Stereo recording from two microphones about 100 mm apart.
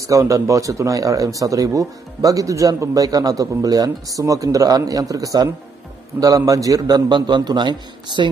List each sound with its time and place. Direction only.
0.1 s a man's voice: 30° right (ahead or behind); by 8.3 s 50° right (ahead or behind)